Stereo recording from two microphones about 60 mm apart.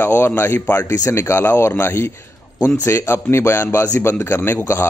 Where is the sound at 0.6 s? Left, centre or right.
Left.